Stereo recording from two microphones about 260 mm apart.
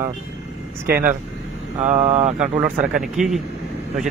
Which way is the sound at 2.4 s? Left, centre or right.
Centre.